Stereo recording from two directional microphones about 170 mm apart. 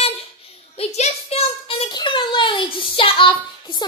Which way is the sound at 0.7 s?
40° left (ahead or behind).